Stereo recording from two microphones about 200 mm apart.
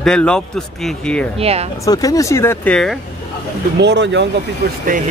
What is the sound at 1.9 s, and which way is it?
Speech, 15° left (ahead or behind).